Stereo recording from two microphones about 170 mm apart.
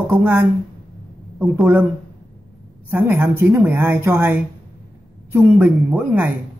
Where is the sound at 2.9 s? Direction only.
10° right (ahead or behind).